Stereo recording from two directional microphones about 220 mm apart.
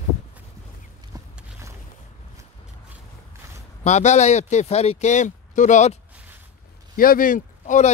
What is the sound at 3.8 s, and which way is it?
Speech, 30° left (ahead or behind).